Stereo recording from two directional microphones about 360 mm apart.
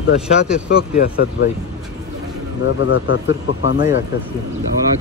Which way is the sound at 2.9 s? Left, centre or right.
Left.